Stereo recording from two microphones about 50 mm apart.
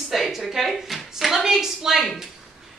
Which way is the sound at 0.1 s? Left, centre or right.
Centre.